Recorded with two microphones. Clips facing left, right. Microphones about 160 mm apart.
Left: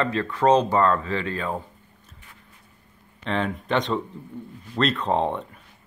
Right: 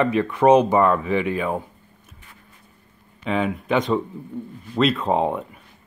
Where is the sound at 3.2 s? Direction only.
5° right (ahead or behind).